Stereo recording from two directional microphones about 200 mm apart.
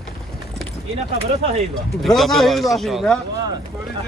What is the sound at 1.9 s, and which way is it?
Speech, centre (ahead or behind).